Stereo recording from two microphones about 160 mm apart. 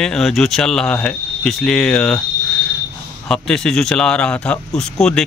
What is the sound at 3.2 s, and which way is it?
Speech, 5° left (ahead or behind).